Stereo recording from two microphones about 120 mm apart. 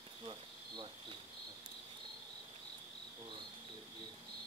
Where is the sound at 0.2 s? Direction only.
40° right (ahead or behind).